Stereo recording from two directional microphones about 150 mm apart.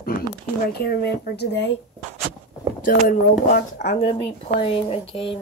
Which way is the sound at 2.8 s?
65° left (ahead or behind).